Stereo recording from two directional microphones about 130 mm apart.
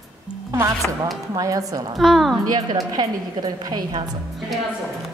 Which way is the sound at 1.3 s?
25° right (ahead or behind).